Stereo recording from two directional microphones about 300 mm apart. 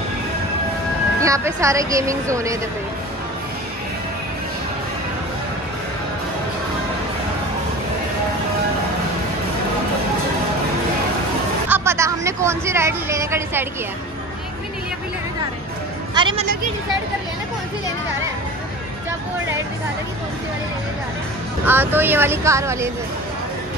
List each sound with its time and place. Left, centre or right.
1.2 s speech: centre
11.7 s a sound: centre
16.2 s a woman's voice: centre
21.6 s speech: centre